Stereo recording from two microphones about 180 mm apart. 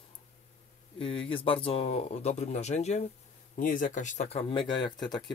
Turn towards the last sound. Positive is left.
turn(degrees=25)  # may be behind; listen again after turning